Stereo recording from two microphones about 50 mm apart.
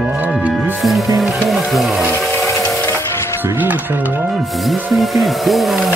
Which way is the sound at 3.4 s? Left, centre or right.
Right.